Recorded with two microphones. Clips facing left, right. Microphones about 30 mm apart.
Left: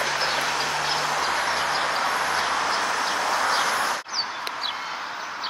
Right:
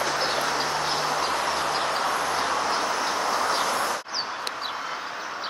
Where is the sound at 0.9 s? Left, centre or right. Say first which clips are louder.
Left 1 dB; left.